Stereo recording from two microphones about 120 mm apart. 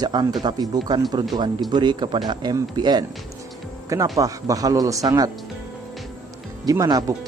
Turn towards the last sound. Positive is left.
turn(degrees=-30)  # may be behind; listen again after turning